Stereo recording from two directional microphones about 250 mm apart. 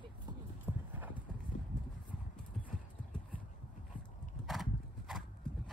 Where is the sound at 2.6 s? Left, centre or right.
Left.